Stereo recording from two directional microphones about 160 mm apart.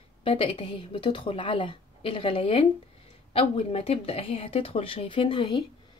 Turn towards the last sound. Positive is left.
turn(degrees=35)  # may be behind; listen again after turning